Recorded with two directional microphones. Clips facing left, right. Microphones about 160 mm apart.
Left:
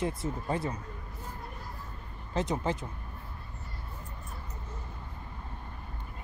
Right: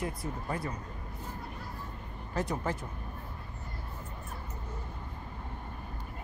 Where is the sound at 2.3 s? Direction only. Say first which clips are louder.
Left 2 dB; 20° left (ahead or behind).